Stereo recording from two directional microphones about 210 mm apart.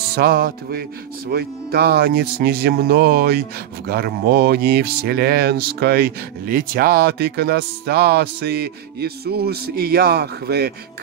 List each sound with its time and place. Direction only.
0.1 s speech: 45° right (ahead or behind)